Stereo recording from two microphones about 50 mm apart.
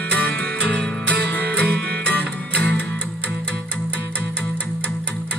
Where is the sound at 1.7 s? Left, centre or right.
Left.